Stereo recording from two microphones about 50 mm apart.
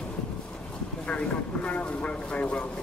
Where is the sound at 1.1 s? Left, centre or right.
Left.